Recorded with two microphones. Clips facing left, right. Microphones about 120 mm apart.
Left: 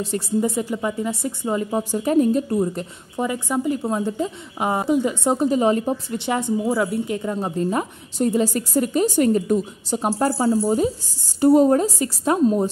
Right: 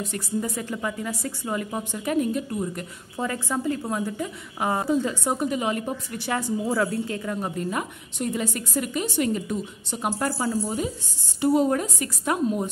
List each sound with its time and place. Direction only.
0.0 s a woman's voice: 30° left (ahead or behind)
3.2 s a woman's voice: 15° left (ahead or behind); by 12.6 s 30° left (ahead or behind)